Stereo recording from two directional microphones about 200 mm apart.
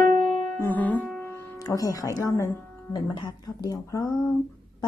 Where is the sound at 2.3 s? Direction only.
15° left (ahead or behind).